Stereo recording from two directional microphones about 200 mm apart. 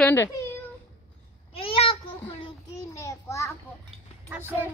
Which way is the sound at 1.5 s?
30° left (ahead or behind).